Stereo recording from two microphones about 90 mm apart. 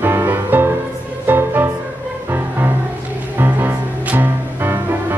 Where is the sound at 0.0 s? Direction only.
25° right (ahead or behind).